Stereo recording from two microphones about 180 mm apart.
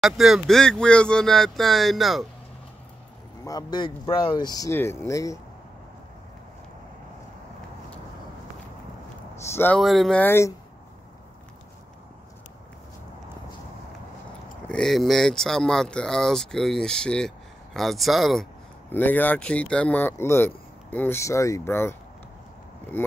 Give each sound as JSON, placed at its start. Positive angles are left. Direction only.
{"t": 0.0, "sound": "speech", "side_deg": 0}
{"t": 3.4, "sound": "speech", "side_deg": 20}
{"t": 9.4, "sound": "speech", "side_deg": 15}
{"t": 9.8, "sound": "speech", "side_deg": 0}
{"t": 14.7, "sound": "speech", "side_deg": 0}